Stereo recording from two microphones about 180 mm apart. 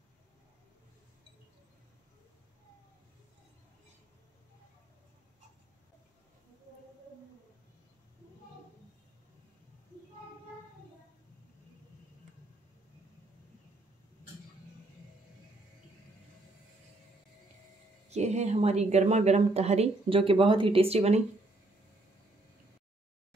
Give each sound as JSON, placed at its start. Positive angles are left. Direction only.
{"t": 18.1, "sound": "speech", "side_deg": -40}